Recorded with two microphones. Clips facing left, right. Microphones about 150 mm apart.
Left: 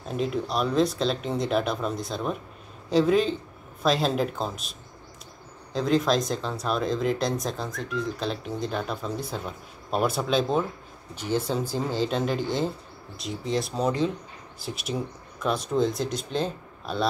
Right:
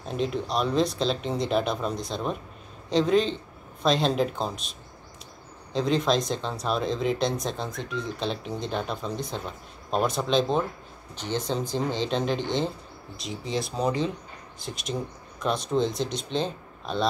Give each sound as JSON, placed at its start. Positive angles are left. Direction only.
{"t": 0.1, "sound": "speech", "side_deg": 5}